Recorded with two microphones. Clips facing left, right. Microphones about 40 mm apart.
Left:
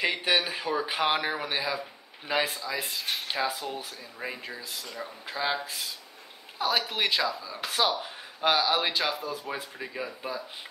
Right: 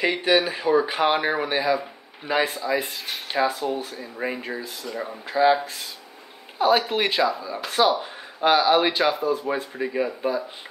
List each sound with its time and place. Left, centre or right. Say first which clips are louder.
0.0 s speech: right 6 dB; centre
5.3 s speech: right 11 dB; centre
7.3 s speech: right 7 dB; right
7.6 s speech: right 6 dB; centre